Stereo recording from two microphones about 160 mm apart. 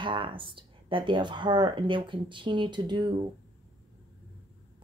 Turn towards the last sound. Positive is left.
turn(degrees=-30)  # may be behind; listen again after turning